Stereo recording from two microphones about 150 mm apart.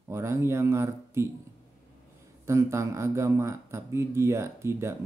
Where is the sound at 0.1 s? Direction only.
20° right (ahead or behind).